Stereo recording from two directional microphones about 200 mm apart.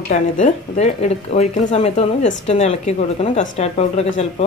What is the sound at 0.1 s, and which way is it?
A woman's voice, 35° left (ahead or behind).